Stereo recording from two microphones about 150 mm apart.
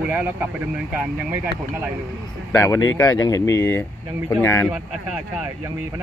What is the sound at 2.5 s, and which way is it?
Speech, 20° left (ahead or behind).